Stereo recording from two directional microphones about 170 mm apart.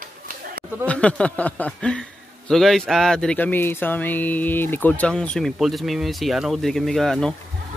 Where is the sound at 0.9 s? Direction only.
5° left (ahead or behind).